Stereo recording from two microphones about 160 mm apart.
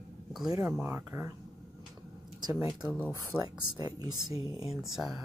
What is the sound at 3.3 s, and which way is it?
Speech, 5° left (ahead or behind).